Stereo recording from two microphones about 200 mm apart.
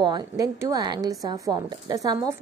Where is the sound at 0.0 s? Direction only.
20° right (ahead or behind).